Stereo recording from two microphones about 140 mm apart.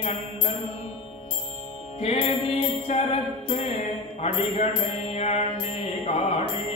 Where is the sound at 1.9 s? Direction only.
50° left (ahead or behind).